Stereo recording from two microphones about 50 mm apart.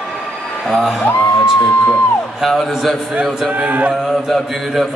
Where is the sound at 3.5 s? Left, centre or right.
Right.